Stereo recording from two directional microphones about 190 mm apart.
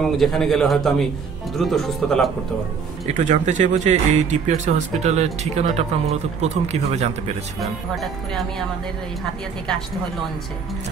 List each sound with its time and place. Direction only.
0.0 s a man's voice: centre (ahead or behind)
3.2 s speech: 40° right (ahead or behind)
7.9 s a man's voice: centre (ahead or behind)